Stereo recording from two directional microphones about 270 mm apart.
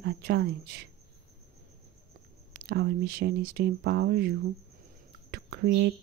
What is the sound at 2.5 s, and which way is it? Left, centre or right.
Speech, right.